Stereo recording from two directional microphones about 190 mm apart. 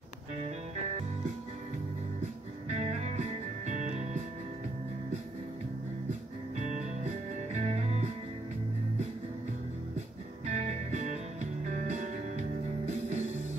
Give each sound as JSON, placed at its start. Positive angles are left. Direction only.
{"t": 2.7, "sound": "music", "side_deg": -35}
{"t": 7.5, "sound": "music", "side_deg": -35}
{"t": 10.4, "sound": "music", "side_deg": -40}